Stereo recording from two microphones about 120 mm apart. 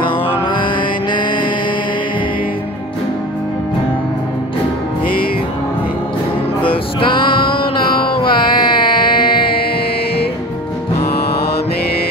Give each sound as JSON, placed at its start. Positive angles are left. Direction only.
{"t": 0.0, "sound": "mantra", "side_deg": 45}
{"t": 6.6, "sound": "music", "side_deg": 45}